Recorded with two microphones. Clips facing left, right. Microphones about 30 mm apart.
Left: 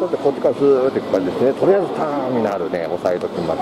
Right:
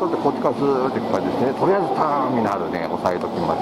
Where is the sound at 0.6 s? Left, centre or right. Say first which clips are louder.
Left 7 dB; left.